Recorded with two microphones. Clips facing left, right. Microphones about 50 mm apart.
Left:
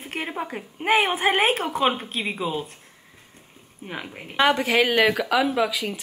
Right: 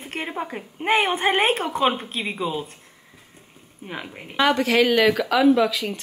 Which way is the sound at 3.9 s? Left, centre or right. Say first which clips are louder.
Even; centre.